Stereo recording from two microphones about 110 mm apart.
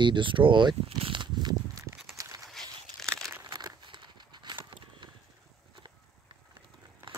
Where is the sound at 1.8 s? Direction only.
25° right (ahead or behind).